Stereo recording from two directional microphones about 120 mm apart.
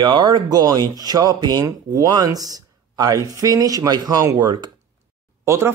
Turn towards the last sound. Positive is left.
turn(degrees=-20)  # may be behind; listen again after turning